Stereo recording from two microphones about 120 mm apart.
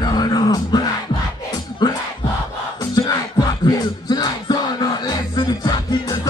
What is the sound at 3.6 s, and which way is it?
Music, 35° left (ahead or behind).